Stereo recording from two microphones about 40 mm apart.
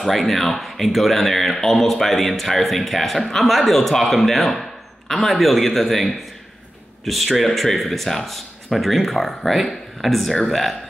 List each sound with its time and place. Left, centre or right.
0.0 s a man's voice: centre